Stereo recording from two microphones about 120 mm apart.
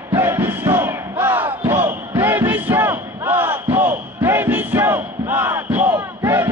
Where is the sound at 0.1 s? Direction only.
20° right (ahead or behind).